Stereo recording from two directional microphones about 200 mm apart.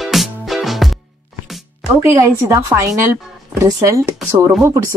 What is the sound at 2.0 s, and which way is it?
Speech, 15° right (ahead or behind).